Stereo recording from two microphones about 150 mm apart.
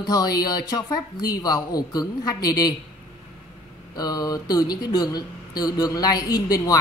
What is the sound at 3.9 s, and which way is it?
Speech, 25° left (ahead or behind).